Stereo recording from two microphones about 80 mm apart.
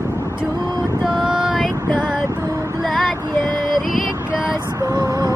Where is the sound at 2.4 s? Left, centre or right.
Right.